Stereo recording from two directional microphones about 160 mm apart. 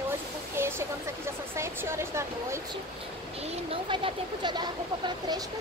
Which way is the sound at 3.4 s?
35° right (ahead or behind).